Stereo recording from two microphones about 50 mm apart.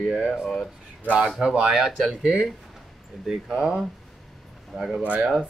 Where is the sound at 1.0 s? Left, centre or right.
Right.